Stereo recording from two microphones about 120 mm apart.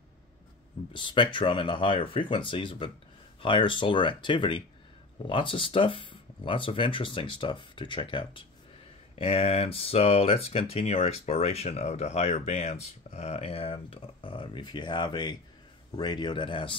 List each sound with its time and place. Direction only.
0.9 s speech: 45° left (ahead or behind)
9.1 s speech: 55° left (ahead or behind)